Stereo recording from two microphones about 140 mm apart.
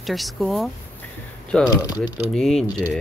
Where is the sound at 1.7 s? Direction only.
25° left (ahead or behind).